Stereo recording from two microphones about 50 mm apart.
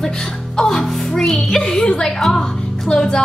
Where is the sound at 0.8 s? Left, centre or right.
Centre.